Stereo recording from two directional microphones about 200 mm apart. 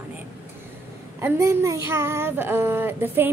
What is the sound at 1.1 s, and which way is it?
A woman's voice, 15° right (ahead or behind).